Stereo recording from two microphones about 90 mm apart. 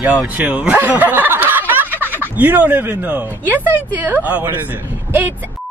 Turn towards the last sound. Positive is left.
turn(degrees=-25)  # may be behind; listen again after turning